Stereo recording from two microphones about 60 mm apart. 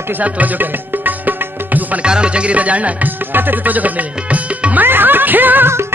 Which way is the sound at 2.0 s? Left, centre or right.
Centre.